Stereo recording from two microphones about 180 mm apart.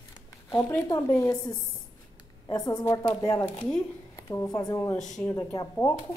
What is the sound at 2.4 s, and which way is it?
A woman's voice, 20° left (ahead or behind).